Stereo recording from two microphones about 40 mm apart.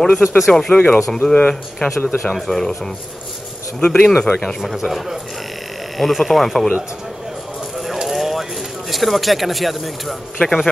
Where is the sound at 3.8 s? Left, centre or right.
Left.